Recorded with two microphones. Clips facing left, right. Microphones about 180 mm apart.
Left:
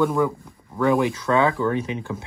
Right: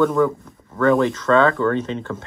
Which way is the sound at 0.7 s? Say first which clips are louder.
Right 3 dB; 10° left (ahead or behind).